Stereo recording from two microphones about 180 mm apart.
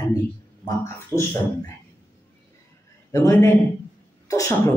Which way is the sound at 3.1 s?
15° left (ahead or behind).